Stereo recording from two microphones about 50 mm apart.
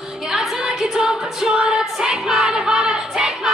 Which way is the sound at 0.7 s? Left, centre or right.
Centre.